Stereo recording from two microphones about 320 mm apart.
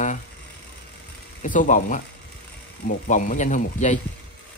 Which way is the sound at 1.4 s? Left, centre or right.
Left.